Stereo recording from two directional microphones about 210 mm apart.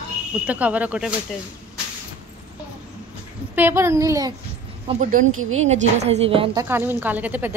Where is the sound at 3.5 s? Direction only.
10° right (ahead or behind).